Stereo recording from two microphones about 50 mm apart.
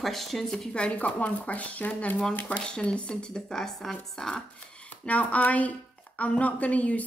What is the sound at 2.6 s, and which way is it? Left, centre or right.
Speech, centre.